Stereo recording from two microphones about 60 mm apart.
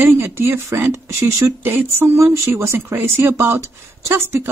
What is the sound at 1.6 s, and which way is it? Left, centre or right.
Speech, right.